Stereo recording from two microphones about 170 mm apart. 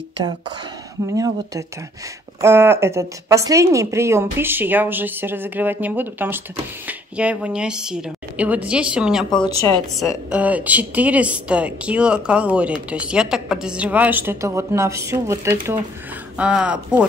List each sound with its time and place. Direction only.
1.1 s a woman's voice: 20° right (ahead or behind)
16.3 s a woman's voice: 5° right (ahead or behind)